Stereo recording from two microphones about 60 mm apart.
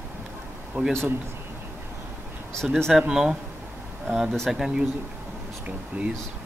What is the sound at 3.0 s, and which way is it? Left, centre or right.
Speech, centre.